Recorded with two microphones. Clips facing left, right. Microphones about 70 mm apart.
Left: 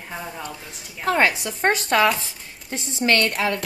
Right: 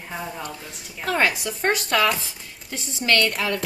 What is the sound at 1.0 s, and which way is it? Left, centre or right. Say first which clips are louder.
Speech: left 2 dB; left.